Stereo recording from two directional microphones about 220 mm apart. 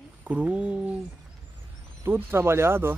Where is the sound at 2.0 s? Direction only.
10° right (ahead or behind).